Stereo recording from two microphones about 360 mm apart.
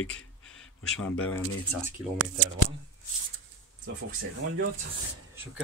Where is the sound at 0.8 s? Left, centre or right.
Centre.